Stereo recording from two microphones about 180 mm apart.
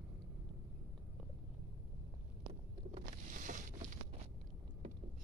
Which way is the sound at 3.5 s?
40° right (ahead or behind).